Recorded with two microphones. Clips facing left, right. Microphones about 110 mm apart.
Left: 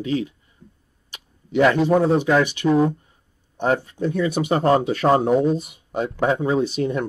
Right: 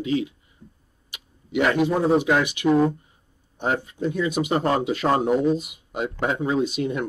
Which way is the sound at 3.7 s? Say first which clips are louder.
Left 3 dB; 40° left (ahead or behind).